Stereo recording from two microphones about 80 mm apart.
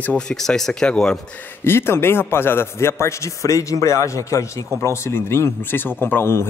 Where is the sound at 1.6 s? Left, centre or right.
Left.